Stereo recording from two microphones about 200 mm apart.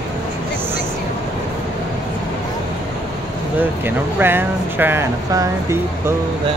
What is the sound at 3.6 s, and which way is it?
Speech, 10° right (ahead or behind).